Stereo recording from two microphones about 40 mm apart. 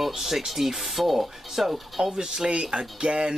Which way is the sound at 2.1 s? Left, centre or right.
Centre.